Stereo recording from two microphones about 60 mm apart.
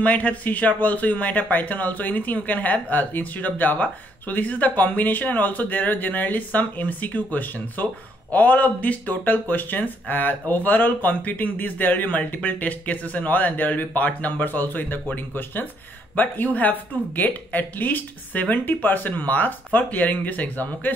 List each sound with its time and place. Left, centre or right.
0.0 s a man's voice: left